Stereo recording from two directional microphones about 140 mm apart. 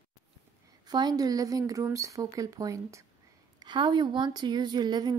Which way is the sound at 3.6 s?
35° right (ahead or behind).